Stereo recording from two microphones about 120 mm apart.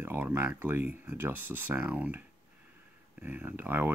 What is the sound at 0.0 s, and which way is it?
Speech, 20° right (ahead or behind).